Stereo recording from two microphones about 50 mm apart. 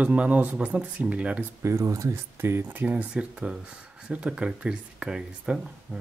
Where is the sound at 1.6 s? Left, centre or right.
Right.